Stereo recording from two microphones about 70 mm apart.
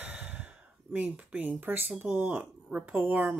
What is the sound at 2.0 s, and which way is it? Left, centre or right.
Speech, right.